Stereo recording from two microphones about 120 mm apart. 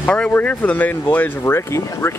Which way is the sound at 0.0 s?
10° left (ahead or behind).